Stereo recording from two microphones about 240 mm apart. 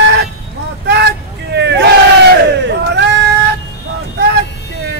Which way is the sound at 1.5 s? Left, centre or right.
Right.